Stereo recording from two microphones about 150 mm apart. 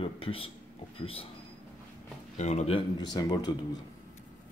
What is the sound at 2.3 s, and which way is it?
Speech, 50° left (ahead or behind).